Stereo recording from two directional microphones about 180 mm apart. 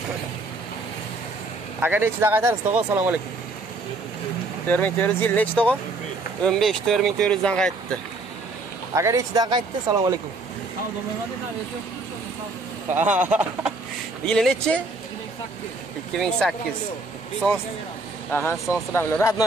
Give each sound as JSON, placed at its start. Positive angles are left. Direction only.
{"t": 1.8, "sound": "speech", "side_deg": -10}
{"t": 4.6, "sound": "speech", "side_deg": 10}
{"t": 8.9, "sound": "speech", "side_deg": -15}
{"t": 12.9, "sound": "speech", "side_deg": -10}
{"t": 14.2, "sound": "speech", "side_deg": 5}
{"t": 16.2, "sound": "speech", "side_deg": 0}
{"t": 18.3, "sound": "speech", "side_deg": 10}